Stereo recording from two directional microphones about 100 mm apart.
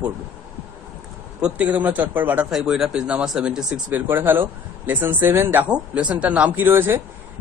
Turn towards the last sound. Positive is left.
turn(degrees=-25)  # may be behind; listen again after turning